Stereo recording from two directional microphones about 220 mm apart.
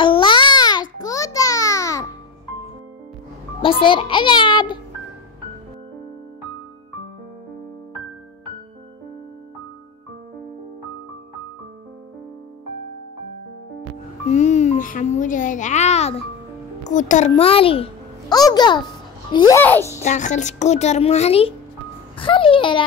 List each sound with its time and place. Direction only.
0.0 s babbling: 20° left (ahead or behind)
3.6 s a child's voice: 25° left (ahead or behind)
14.3 s music: 30° left (ahead or behind)
16.8 s a child's voice: 35° left (ahead or behind); by 19.9 s 10° left (ahead or behind)
20.1 s a child's voice: 35° left (ahead or behind)